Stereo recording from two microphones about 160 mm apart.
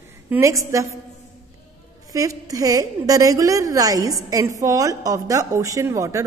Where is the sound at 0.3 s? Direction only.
20° right (ahead or behind).